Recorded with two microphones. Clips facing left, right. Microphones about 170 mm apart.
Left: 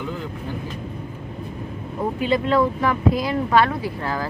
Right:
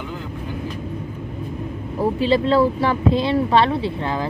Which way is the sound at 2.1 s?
30° right (ahead or behind).